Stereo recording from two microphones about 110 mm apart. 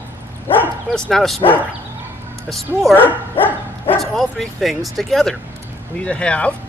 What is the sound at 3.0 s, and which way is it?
Speech, 20° left (ahead or behind).